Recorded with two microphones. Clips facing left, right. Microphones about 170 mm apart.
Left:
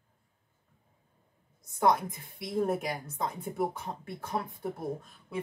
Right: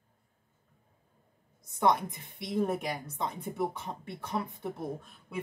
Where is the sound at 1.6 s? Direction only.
Centre (ahead or behind).